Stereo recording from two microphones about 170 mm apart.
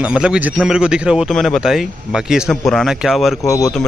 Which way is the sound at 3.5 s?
20° left (ahead or behind).